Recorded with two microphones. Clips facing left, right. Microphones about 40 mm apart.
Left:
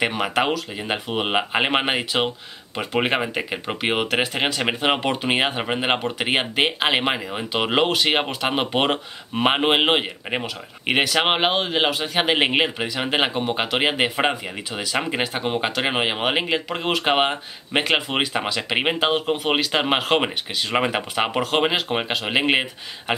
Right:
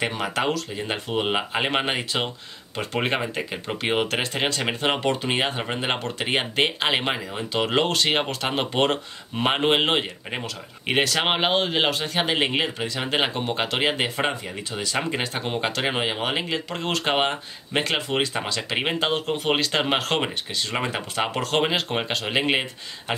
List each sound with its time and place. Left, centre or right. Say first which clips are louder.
0.0 s speech: left 3 dB; left
12.4 s speech: left 4 dB; left